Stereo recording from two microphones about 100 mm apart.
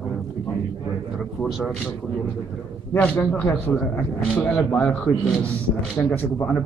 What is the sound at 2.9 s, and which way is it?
A man's voice, 15° left (ahead or behind).